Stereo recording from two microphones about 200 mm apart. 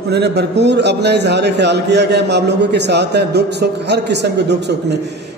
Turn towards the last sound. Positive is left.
turn(degrees=-55)  # may be behind; listen again after turning